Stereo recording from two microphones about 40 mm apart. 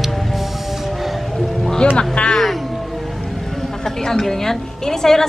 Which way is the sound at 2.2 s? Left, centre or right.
Left.